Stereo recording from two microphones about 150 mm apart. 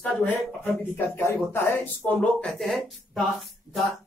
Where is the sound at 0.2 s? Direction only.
10° left (ahead or behind).